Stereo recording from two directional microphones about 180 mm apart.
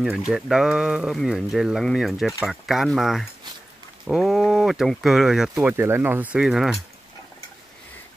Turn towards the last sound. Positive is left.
turn(degrees=0)  # may be behind; listen again after turning